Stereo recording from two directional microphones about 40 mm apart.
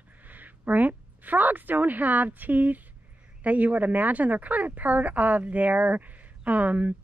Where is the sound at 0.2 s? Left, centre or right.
Right.